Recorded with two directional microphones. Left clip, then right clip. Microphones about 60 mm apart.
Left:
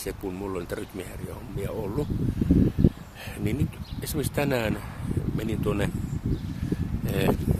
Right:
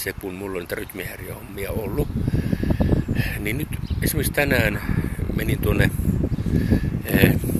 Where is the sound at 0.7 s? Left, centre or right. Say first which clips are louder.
Right 5 dB; centre.